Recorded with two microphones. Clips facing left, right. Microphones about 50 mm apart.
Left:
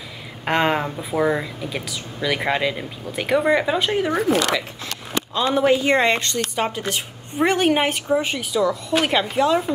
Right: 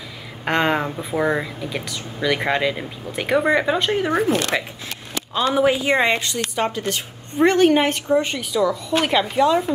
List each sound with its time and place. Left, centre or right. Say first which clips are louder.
0.5 s a woman's voice: even; centre
4.2 s speech: even; right
5.5 s a woman's voice: left 1 dB; centre
7.3 s a woman's voice: right 3 dB; centre